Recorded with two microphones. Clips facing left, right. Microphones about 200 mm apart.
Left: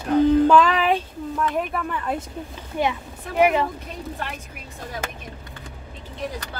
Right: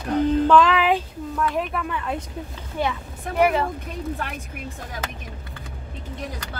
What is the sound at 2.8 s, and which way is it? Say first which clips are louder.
Laughter: left 2 dB; 20° left (ahead or behind).